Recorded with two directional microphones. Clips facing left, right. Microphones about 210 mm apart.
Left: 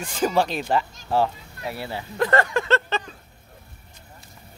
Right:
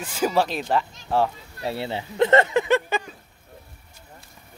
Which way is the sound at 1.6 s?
25° right (ahead or behind).